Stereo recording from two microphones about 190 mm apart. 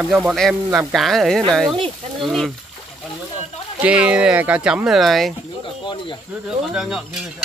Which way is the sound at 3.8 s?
5° right (ahead or behind).